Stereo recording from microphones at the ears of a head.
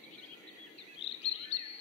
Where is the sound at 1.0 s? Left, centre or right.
Left.